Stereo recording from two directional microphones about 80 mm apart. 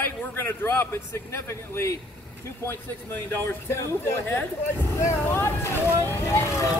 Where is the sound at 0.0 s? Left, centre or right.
Left.